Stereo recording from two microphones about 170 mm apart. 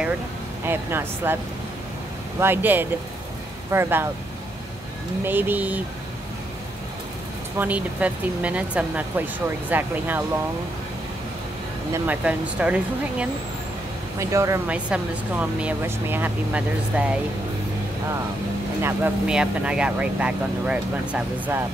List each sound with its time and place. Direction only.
0.7 s speech: 15° right (ahead or behind)
2.4 s speech: 10° right (ahead or behind)
5.2 s speech: 10° right (ahead or behind)
7.5 s speech: 10° right (ahead or behind)
11.9 s speech: 10° right (ahead or behind)
14.2 s speech: 15° right (ahead or behind)
18.8 s speech: 15° right (ahead or behind)